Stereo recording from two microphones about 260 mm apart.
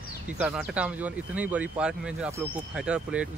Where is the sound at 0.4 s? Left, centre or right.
Centre.